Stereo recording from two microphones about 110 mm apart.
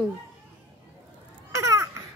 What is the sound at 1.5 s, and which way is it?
Babbling, 25° right (ahead or behind).